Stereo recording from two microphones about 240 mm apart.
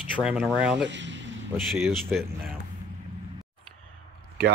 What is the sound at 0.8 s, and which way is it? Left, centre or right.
Speech, right.